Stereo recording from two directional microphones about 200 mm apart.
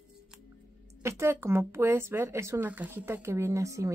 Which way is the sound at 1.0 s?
10° right (ahead or behind).